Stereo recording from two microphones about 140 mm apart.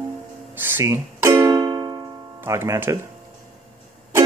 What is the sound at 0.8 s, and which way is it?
Music, 20° right (ahead or behind).